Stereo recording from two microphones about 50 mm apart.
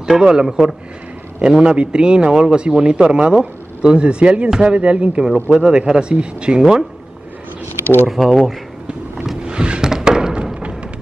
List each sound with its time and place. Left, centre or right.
0.0 s a man's voice: centre
8.1 s speech: centre
9.4 s music: centre